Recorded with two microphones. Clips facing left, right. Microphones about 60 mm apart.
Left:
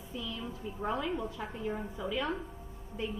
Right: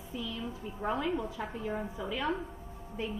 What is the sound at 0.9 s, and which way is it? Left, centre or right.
A woman's voice, centre.